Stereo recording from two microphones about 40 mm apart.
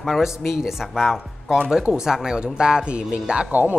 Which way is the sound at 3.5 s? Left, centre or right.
Right.